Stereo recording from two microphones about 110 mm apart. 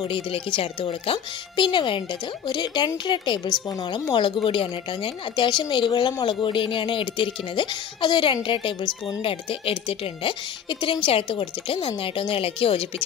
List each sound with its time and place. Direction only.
0.0 s a woman's voice: 50° left (ahead or behind)